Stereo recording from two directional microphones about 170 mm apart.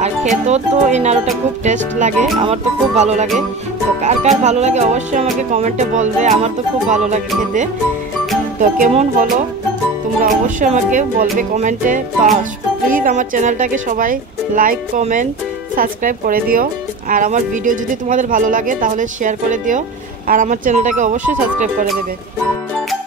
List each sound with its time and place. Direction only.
0.5 s speech: 40° right (ahead or behind)
10.2 s speech: 50° right (ahead or behind)